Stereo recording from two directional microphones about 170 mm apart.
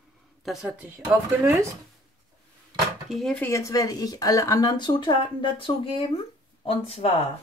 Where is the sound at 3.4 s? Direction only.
20° left (ahead or behind); by 7.0 s 35° left (ahead or behind).